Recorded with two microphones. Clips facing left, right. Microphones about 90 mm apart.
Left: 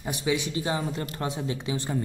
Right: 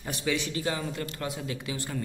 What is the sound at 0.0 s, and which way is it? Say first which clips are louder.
Speech: left 3 dB; 15° left (ahead or behind).